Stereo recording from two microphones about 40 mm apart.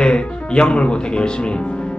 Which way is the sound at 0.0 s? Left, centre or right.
Left.